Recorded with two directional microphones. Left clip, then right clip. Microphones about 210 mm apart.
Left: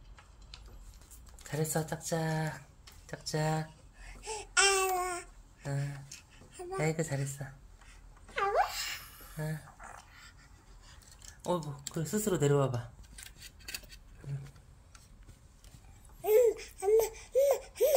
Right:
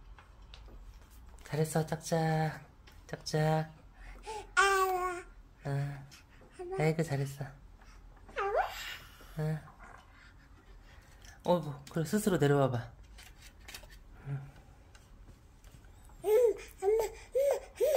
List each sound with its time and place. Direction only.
1.4 s speech: 5° right (ahead or behind)
3.1 s babbling: 10° right (ahead or behind)
6.5 s a sound: 5° right (ahead or behind)
6.8 s speech: 15° right (ahead or behind)
8.4 s wail: centre (ahead or behind)
9.4 s speech: 15° right (ahead or behind)
11.4 s speech: 20° right (ahead or behind)
16.3 s laughter: 10° right (ahead or behind)